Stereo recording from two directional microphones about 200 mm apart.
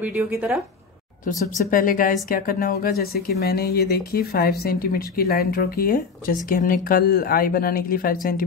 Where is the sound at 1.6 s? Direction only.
45° left (ahead or behind).